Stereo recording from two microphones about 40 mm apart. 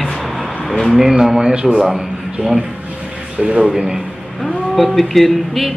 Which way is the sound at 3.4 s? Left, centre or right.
Right.